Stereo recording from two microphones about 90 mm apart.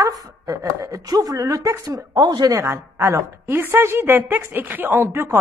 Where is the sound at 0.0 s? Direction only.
40° right (ahead or behind).